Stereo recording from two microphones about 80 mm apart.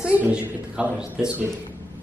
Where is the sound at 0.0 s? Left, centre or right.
Centre.